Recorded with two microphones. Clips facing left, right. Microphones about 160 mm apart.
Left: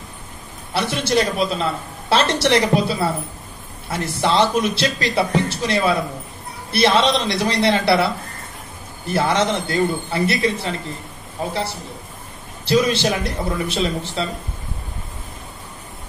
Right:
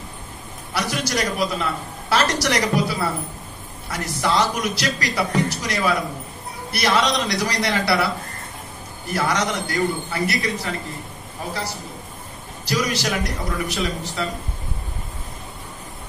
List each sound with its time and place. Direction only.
0.7 s a woman's voice: 25° left (ahead or behind)
12.6 s a woman's voice: 25° left (ahead or behind)